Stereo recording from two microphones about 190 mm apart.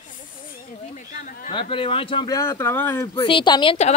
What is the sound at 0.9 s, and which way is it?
Speech, 45° left (ahead or behind).